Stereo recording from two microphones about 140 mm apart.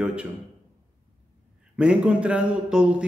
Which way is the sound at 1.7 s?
5° right (ahead or behind).